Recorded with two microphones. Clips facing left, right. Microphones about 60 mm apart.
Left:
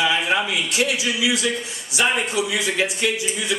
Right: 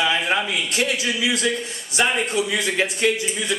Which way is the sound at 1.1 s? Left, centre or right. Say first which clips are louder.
Left 1 dB; right.